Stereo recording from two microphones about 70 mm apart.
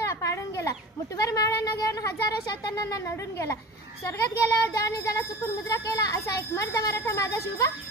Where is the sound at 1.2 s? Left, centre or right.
Left.